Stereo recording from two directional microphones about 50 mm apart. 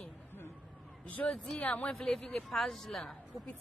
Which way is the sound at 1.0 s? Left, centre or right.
Left.